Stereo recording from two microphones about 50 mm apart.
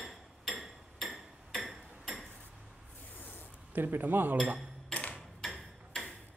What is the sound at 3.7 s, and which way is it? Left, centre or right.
Speech, right.